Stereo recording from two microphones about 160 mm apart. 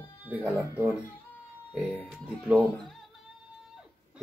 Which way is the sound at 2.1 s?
Centre (ahead or behind).